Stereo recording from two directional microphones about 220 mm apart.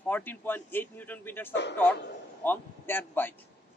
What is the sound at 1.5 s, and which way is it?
Speech, 50° left (ahead or behind).